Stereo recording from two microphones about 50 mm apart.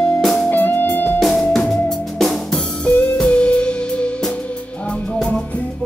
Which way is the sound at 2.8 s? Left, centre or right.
Left.